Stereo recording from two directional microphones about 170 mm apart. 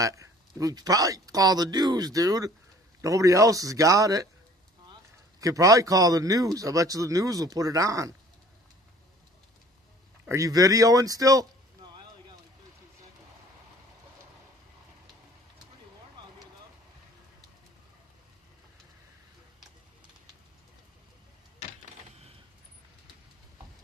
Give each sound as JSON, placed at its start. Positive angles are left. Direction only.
{"t": 0.0, "sound": "a man's voice", "side_deg": -20}
{"t": 5.4, "sound": "a man's voice", "side_deg": -20}
{"t": 10.2, "sound": "a man's voice", "side_deg": -20}